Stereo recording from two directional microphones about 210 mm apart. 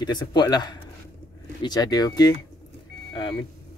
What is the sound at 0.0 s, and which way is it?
Speech, 20° left (ahead or behind).